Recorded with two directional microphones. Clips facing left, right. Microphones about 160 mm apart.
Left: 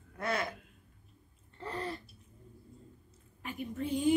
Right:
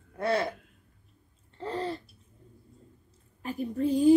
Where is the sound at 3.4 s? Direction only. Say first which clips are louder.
Right 8 dB; 35° right (ahead or behind).